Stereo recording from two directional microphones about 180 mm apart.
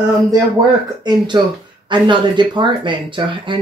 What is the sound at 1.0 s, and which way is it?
Speech, 25° right (ahead or behind).